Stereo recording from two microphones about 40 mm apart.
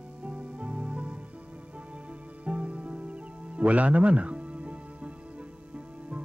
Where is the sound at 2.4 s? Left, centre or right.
Right.